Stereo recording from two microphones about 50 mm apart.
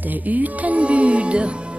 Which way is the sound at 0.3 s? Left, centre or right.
Right.